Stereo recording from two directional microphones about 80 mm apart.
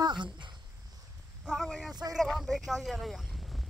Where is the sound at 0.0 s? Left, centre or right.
Right.